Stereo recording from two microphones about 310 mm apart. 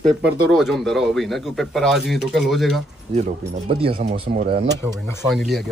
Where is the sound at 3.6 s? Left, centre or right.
Centre.